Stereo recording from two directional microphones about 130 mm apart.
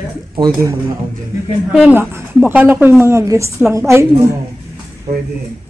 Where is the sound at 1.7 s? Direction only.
10° right (ahead or behind).